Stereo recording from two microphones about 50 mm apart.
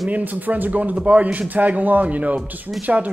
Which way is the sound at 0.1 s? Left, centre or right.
Right.